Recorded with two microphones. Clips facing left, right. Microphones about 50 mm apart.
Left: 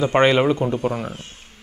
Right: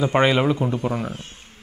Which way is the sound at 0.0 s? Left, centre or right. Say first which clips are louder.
Left 2 dB; centre.